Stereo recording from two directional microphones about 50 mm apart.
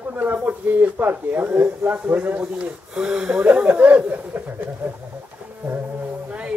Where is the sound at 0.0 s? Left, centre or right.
Right.